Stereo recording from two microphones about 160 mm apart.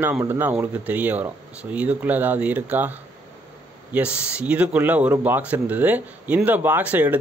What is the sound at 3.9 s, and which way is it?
Speech, 5° right (ahead or behind).